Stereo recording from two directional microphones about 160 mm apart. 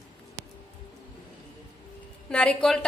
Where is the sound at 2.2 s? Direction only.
5° left (ahead or behind).